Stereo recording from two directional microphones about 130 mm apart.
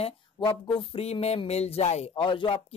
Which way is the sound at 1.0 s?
50° left (ahead or behind).